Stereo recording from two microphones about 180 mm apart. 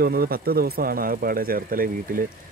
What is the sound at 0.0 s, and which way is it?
Speech, 60° right (ahead or behind).